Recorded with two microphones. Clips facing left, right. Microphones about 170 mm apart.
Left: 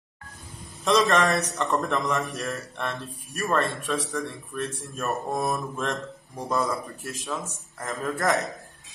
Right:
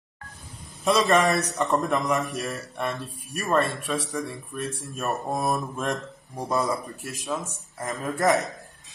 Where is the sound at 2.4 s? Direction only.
15° right (ahead or behind).